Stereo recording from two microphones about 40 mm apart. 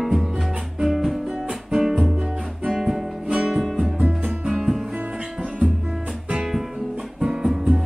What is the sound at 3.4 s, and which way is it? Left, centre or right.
Music, centre.